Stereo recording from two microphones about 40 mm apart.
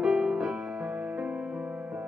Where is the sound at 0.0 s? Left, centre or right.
Centre.